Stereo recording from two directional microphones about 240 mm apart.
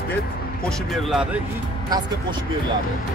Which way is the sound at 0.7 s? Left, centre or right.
Centre.